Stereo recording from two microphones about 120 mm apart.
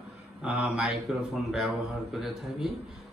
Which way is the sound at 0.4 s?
10° right (ahead or behind).